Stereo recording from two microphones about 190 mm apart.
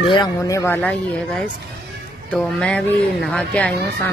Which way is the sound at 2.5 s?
5° left (ahead or behind).